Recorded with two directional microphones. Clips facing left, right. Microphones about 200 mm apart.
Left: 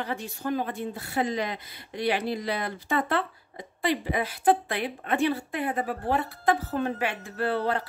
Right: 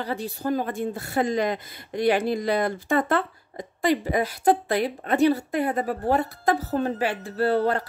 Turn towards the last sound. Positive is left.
turn(degrees=-45)  # may be behind; listen again after turning